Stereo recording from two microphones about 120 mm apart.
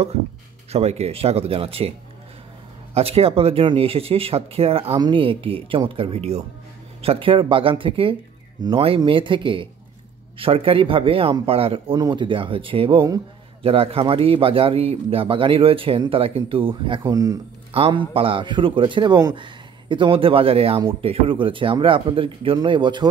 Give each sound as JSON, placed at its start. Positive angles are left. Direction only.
{"t": 0.7, "sound": "a man's voice", "side_deg": -60}
{"t": 12.0, "sound": "a man's voice", "side_deg": -40}
{"t": 17.1, "sound": "speech", "side_deg": -30}
{"t": 17.7, "sound": "a man's voice", "side_deg": -50}